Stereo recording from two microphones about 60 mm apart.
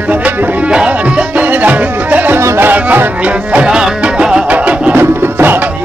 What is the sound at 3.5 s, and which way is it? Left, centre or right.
Music, centre.